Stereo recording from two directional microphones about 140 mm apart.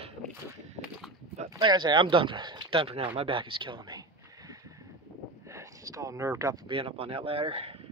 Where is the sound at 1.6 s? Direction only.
30° right (ahead or behind).